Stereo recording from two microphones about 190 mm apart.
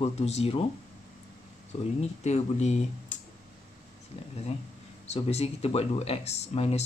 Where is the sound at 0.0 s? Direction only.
35° left (ahead or behind).